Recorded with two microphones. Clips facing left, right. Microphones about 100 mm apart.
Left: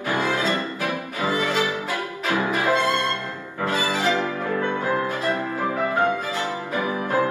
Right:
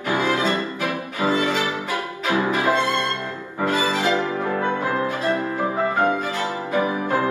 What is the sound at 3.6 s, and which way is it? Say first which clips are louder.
Music: right 2 dB; 15° right (ahead or behind).